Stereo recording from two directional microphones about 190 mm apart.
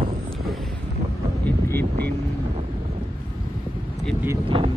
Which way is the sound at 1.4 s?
10° left (ahead or behind).